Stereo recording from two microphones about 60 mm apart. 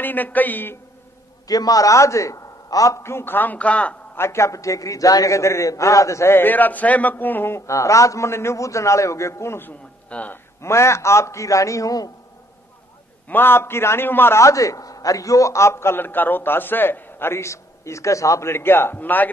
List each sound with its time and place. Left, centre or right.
0.0 s a man's voice: left
1.5 s a man's voice: left
3.0 s a man's voice: left
3.5 s a man's voice: left
4.1 s a man's voice: left
6.3 s a man's voice: left
10.0 s a man's voice: left
10.6 s a man's voice: left
13.3 s a man's voice: left
14.4 s a man's voice: left
18.5 s a man's voice: left